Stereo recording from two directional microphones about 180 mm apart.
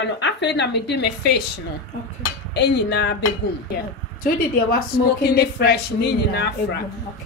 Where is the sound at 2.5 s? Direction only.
70° left (ahead or behind).